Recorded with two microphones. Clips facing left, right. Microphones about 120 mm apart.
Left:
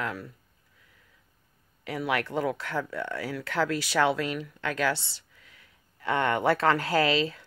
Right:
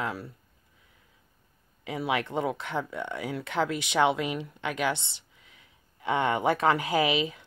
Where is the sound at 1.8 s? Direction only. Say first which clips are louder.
Even; 20° right (ahead or behind).